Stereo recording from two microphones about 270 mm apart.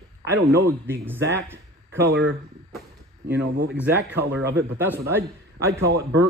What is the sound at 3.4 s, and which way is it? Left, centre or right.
Speech, right.